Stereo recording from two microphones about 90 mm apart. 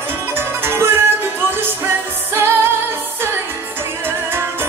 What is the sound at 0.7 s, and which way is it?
Music, 25° right (ahead or behind).